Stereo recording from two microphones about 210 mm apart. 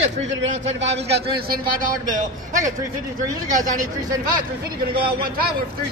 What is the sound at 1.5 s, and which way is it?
A man's voice, 40° right (ahead or behind).